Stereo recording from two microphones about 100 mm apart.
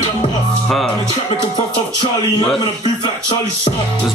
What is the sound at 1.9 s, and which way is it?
Speech, 55° left (ahead or behind).